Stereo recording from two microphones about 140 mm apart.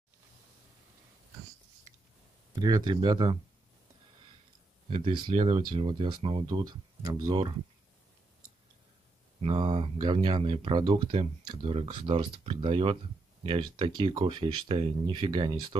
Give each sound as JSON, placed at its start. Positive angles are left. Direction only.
{"t": 2.5, "sound": "speech", "side_deg": -30}
{"t": 4.8, "sound": "speech", "side_deg": -40}
{"t": 9.4, "sound": "speech", "side_deg": -40}